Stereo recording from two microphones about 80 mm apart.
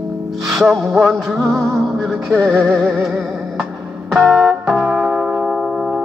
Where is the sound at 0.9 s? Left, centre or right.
Right.